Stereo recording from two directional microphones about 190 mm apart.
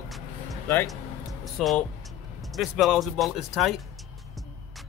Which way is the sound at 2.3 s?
Centre (ahead or behind).